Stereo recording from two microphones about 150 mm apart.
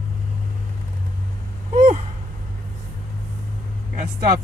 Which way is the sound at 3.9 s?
65° right (ahead or behind).